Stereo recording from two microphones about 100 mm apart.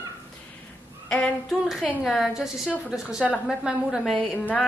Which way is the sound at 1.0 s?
10° left (ahead or behind).